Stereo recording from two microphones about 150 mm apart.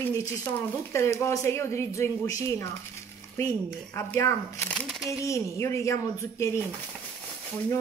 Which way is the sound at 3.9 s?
15° left (ahead or behind).